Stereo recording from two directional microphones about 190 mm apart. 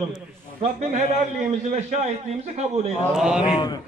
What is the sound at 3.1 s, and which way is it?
Speech, 5° right (ahead or behind).